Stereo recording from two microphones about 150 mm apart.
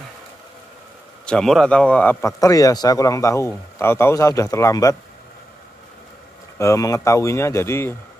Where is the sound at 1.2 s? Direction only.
5° left (ahead or behind); by 4.9 s 20° left (ahead or behind).